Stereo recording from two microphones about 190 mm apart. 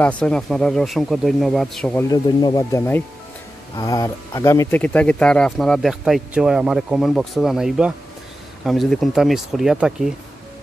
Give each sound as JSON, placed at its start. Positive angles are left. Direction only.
{"t": 0.0, "sound": "speech", "side_deg": 5}
{"t": 2.0, "sound": "speech", "side_deg": 20}